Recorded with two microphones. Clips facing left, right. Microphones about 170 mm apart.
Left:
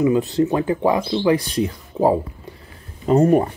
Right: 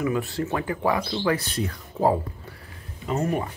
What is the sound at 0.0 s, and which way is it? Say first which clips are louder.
Speech: left 9 dB; 20° left (ahead or behind).